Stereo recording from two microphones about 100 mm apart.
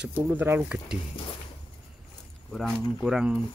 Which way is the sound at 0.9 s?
10° right (ahead or behind).